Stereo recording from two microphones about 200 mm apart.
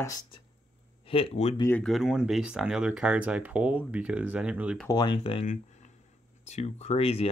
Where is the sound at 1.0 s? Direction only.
30° left (ahead or behind).